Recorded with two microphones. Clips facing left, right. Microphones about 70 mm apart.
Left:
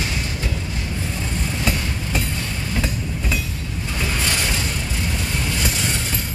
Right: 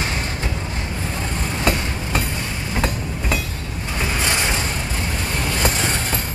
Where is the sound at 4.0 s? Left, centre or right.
Right.